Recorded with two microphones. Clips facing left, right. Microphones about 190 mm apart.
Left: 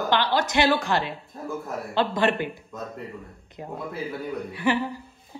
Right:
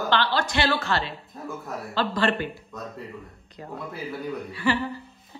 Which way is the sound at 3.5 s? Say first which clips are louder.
Left 2 dB; 15° left (ahead or behind).